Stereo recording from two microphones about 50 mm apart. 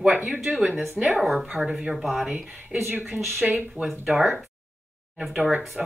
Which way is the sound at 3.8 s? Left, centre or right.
Right.